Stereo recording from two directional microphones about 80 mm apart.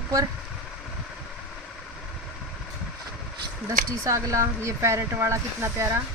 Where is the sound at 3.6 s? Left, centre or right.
Right.